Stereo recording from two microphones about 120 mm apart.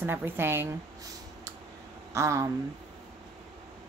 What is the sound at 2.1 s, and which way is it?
Speech, 25° right (ahead or behind).